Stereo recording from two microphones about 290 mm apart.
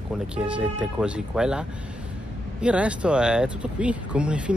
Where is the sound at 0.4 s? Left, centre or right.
Centre.